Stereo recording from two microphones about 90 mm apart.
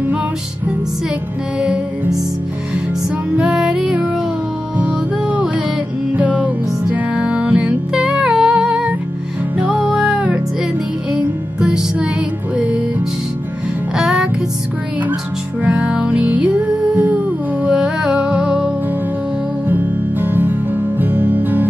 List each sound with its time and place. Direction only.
3.3 s music: 10° right (ahead or behind)
11.6 s music: 10° right (ahead or behind)
13.9 s music: 5° right (ahead or behind)
15.6 s music: 15° right (ahead or behind)
16.9 s humming: 20° right (ahead or behind)
17.6 s music: 10° right (ahead or behind)
19.7 s music: 20° right (ahead or behind)